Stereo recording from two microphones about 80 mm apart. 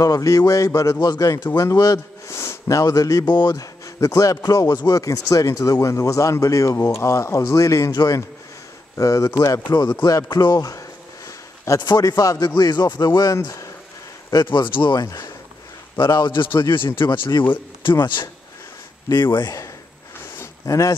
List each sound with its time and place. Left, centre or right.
0.0 s speech: left
3.3 s speech: left
3.8 s a man's voice: left
9.7 s speech: left
10.3 s a sound: left
12.0 s speech: left
14.3 s a man's voice: left
15.0 s speech: left
16.0 s a man's voice: left
17.4 s a man's voice: left
20.6 s speech: left